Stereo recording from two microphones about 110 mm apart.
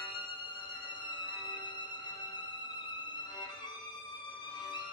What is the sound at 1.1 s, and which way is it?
Music, 45° left (ahead or behind).